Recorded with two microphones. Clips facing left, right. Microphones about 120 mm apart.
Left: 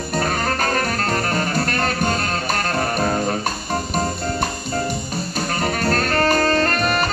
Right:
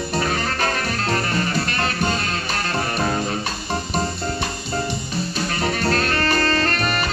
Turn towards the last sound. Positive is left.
turn(degrees=45)  # may be behind; listen again after turning